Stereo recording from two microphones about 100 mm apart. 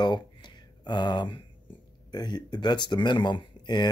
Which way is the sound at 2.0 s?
45° left (ahead or behind).